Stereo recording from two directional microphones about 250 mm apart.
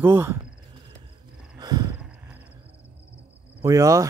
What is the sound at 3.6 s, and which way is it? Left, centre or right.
Speech, centre.